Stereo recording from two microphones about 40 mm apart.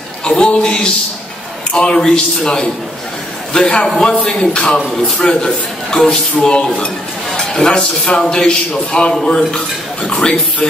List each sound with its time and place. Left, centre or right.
0.3 s a man's voice: left